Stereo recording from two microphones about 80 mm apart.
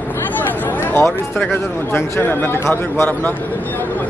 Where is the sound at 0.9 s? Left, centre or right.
Left.